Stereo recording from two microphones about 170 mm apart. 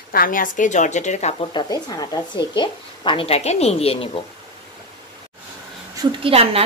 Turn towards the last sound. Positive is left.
turn(degrees=-35)  # may be behind; listen again after turning